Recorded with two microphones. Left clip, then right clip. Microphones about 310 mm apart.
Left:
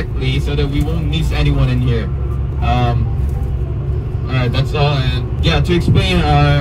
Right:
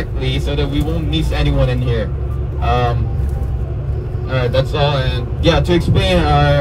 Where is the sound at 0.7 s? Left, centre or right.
Right.